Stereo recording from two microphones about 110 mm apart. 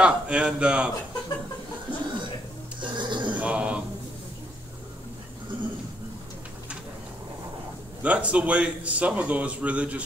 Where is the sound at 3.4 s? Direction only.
10° right (ahead or behind).